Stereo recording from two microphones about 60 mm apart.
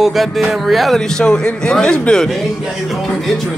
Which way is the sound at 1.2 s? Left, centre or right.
Centre.